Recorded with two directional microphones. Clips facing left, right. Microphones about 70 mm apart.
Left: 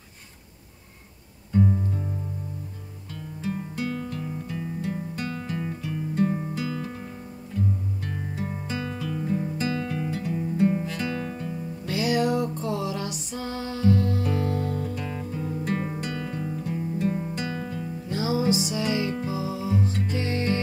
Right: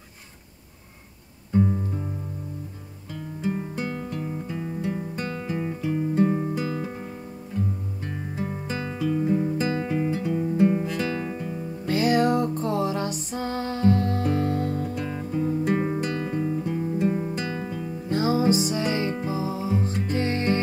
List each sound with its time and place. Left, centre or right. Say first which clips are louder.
1.5 s music: right 1 dB; centre
3.4 s music: right 1 dB; right
8.6 s music: right 1 dB; right
8.9 s music: right 8 dB; centre
10.6 s music: right 2 dB; centre
11.9 s music: right 3 dB; right
15.0 s music: right 4 dB; right
16.0 s music: right 4 dB; right
16.3 s guitar: right 5 dB; right
17.5 s music: right 1 dB; centre
18.1 s music: right 3 dB; right